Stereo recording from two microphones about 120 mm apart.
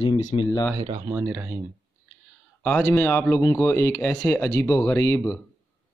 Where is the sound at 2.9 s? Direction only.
15° left (ahead or behind).